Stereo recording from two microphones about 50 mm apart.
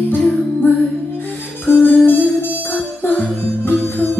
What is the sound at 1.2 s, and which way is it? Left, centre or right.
Music, left.